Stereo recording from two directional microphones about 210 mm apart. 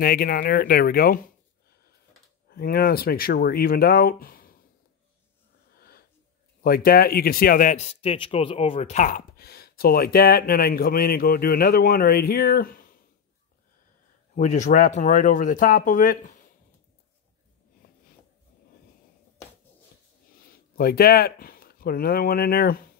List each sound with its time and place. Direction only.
0.0 s speech: 45° left (ahead or behind)
2.5 s speech: 45° left (ahead or behind)
5.8 s wheeze: 45° left (ahead or behind)
6.6 s speech: 45° left (ahead or behind)
14.3 s speech: 35° left (ahead or behind)
20.7 s speech: 45° left (ahead or behind)